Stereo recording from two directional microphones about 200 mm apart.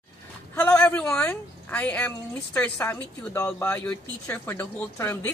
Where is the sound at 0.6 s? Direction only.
5° left (ahead or behind).